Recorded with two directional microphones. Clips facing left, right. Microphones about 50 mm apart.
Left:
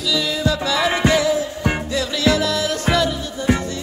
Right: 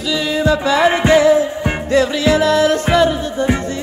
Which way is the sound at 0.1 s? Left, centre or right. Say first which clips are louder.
Right 5 dB; right.